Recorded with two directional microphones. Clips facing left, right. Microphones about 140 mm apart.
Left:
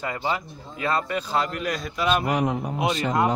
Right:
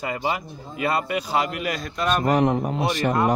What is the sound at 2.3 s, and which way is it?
Speech, 50° right (ahead or behind).